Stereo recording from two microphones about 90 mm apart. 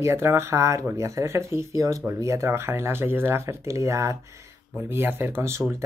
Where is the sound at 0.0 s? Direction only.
30° right (ahead or behind).